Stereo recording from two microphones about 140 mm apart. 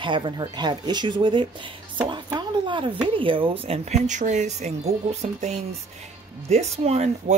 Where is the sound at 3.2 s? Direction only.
40° right (ahead or behind).